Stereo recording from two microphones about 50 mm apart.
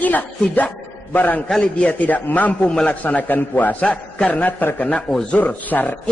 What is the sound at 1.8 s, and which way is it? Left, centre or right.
Speech, left.